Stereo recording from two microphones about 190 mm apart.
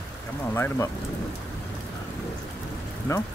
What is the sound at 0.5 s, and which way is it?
Speech, 15° left (ahead or behind).